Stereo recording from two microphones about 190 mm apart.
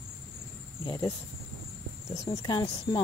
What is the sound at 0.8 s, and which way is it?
Speech, 25° left (ahead or behind).